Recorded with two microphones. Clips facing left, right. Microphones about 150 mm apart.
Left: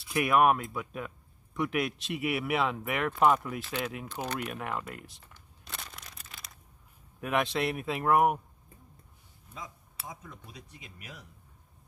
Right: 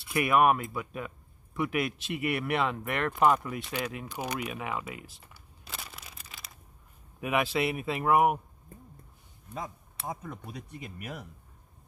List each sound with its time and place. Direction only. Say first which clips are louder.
0.1 s speech: even; centre (ahead or behind)
4.1 s speech: right 1 dB; 10° right (ahead or behind)
4.5 s crumpling: right 1 dB; centre (ahead or behind)
7.2 s speech: right 1 dB; 5° right (ahead or behind)
10.0 s speech: right 8 dB; 55° right (ahead or behind)